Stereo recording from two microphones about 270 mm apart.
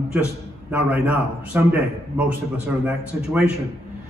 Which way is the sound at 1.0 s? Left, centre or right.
Centre.